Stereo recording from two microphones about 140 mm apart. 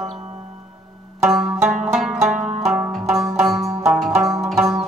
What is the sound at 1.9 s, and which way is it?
Music, 5° right (ahead or behind).